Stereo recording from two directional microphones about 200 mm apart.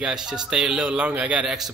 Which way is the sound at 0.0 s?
5° right (ahead or behind).